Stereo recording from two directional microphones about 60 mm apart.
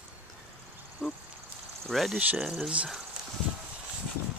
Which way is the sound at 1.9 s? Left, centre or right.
Centre.